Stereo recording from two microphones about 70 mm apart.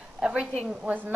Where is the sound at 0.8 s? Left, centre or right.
Right.